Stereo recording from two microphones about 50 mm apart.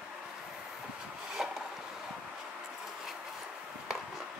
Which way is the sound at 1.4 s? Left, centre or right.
Centre.